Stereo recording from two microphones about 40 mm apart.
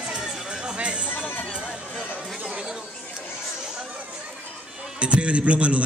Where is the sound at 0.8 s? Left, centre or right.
Right.